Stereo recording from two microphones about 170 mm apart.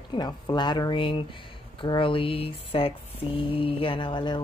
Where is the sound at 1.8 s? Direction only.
30° left (ahead or behind).